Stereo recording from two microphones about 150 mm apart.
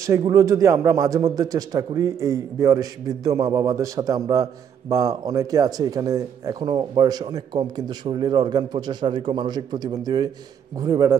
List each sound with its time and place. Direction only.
0.0 s a man's voice: 20° right (ahead or behind)